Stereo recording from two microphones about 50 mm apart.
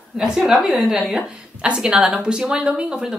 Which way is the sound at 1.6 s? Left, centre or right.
Right.